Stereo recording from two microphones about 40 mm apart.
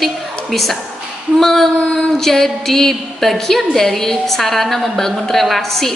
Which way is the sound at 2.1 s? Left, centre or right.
Centre.